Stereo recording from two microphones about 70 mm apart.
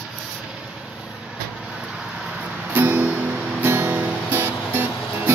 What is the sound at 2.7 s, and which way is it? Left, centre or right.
Music, right.